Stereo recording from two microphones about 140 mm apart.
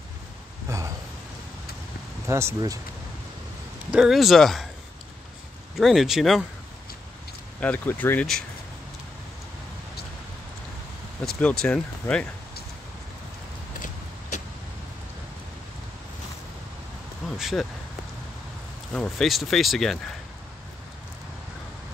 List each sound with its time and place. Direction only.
0.7 s a sound: 20° right (ahead or behind)
2.2 s speech: 20° right (ahead or behind)
3.9 s speech: 5° right (ahead or behind)
5.8 s speech: centre (ahead or behind)
7.6 s speech: 10° left (ahead or behind)
11.2 s speech: 5° left (ahead or behind)
17.4 s speech: centre (ahead or behind)
18.9 s speech: centre (ahead or behind)